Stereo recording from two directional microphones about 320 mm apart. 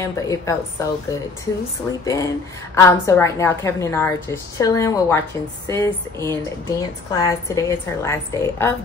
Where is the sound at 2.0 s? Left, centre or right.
Centre.